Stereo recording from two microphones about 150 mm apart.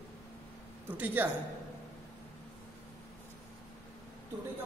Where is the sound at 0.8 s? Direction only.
10° right (ahead or behind).